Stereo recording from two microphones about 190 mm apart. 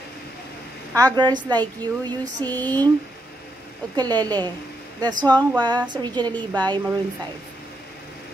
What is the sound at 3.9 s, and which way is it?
Speech, 20° right (ahead or behind).